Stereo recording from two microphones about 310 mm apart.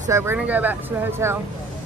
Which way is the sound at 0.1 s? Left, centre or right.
Centre.